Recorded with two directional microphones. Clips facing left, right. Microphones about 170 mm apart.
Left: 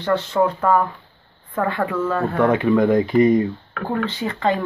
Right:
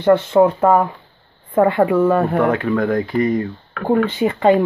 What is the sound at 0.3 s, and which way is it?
A woman's voice, 25° right (ahead or behind).